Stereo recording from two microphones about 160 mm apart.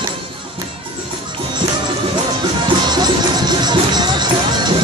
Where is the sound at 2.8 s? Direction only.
25° right (ahead or behind).